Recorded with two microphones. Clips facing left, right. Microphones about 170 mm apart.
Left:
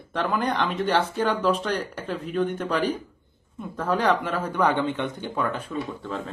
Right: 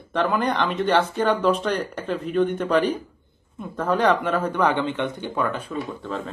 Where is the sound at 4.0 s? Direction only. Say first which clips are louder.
Right 4 dB; 55° right (ahead or behind).